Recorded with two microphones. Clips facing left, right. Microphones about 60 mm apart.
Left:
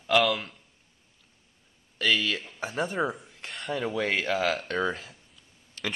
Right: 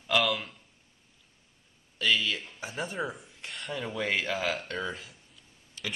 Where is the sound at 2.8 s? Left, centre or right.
Centre.